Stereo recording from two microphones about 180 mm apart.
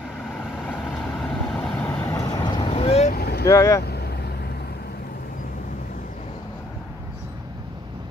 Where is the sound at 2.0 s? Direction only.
20° left (ahead or behind).